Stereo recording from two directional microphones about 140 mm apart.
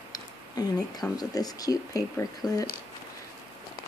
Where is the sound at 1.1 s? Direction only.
25° left (ahead or behind).